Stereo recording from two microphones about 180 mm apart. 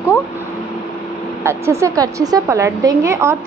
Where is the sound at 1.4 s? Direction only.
15° right (ahead or behind).